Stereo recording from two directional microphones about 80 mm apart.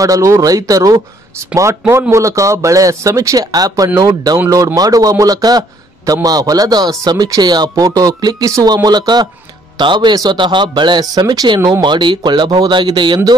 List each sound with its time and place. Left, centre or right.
0.0 s a man's voice: right
9.8 s speech: right
11.8 s speech: right